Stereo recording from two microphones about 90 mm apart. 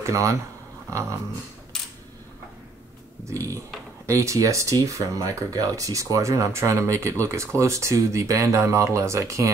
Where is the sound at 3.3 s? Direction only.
35° right (ahead or behind).